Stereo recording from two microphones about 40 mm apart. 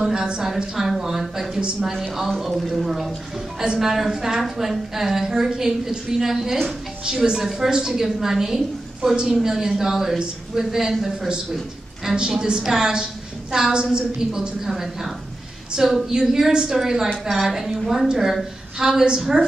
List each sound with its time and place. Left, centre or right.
0.0 s a woman's voice: right
1.5 s a woman's voice: centre
2.0 s a woman's voice: centre
11.5 s a sound: centre
12.2 s a woman's voice: centre